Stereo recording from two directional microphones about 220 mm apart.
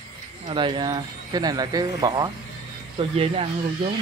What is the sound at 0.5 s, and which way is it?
Speech, 20° right (ahead or behind).